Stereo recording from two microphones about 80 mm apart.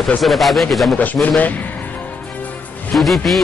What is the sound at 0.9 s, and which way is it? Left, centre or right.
Speech, centre.